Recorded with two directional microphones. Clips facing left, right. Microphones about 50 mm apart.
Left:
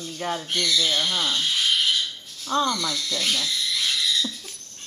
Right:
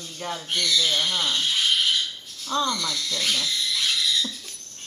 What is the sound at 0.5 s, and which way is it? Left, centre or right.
Speech, centre.